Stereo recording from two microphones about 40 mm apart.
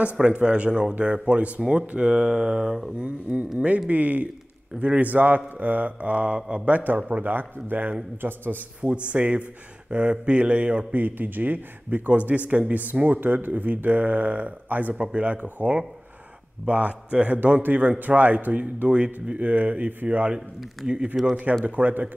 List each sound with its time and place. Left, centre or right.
0.0 s speech: right
3.0 s speech: right
8.2 s a man's voice: right
9.1 s speech: right
11.0 s speech: right
13.0 s speech: right
17.6 s speech: right